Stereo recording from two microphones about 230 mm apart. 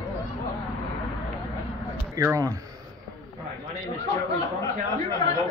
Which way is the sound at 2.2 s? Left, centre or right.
Centre.